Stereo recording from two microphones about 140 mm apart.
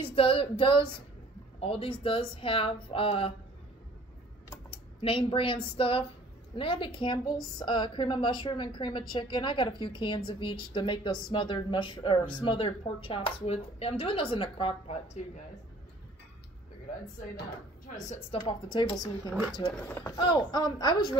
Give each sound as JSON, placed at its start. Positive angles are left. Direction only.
{"t": 0.0, "sound": "a woman's voice", "side_deg": 40}
{"t": 4.6, "sound": "a woman's voice", "side_deg": 40}
{"t": 18.0, "sound": "speech", "side_deg": 55}
{"t": 18.4, "sound": "a woman's voice", "side_deg": 35}
{"t": 19.9, "sound": "speech", "side_deg": 15}
{"t": 20.2, "sound": "a woman's voice", "side_deg": 30}